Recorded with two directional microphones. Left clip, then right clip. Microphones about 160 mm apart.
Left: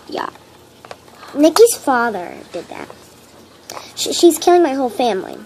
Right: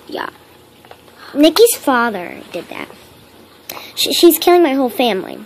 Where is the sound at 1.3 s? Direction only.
30° right (ahead or behind).